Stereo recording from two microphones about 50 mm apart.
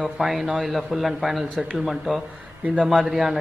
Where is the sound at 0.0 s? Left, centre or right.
Centre.